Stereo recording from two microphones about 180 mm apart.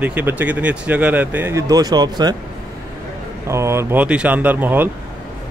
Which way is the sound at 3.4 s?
15° right (ahead or behind).